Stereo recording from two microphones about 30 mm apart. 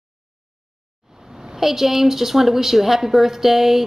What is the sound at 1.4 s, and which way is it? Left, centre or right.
A woman's voice, centre.